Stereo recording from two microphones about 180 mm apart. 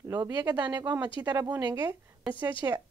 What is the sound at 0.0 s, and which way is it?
A woman's voice, 20° right (ahead or behind).